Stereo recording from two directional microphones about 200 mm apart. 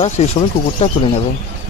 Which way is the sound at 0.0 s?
30° left (ahead or behind).